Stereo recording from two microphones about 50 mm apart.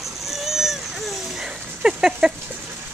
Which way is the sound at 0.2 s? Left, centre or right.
Centre.